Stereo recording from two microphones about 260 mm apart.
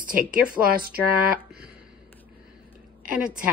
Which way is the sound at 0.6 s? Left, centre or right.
Right.